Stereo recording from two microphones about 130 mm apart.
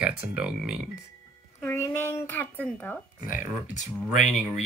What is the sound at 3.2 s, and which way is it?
Speech, 90° left.